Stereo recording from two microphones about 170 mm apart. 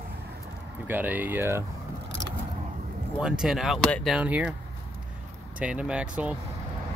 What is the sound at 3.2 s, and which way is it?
Speech, 5° right (ahead or behind).